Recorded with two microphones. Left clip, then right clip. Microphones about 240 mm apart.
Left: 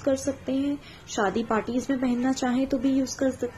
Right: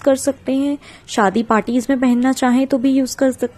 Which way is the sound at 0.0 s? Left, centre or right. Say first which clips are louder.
Right 10 dB; right.